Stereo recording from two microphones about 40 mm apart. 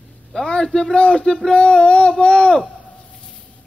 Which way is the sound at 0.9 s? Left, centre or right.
Left.